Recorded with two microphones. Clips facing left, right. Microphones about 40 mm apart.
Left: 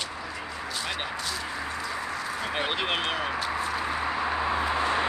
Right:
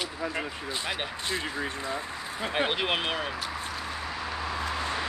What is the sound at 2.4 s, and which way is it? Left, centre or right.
Speech, centre.